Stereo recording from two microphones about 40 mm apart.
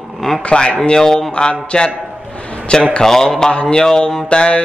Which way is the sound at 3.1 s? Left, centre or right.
Centre.